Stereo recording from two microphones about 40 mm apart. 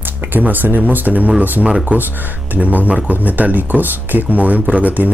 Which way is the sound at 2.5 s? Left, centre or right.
Right.